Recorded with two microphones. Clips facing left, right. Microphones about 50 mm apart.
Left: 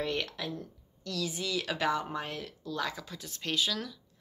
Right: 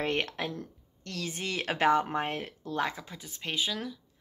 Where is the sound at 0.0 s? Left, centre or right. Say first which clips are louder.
Right 3 dB; right.